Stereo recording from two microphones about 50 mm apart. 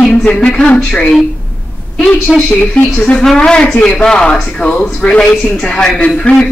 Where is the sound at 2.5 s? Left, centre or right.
Left.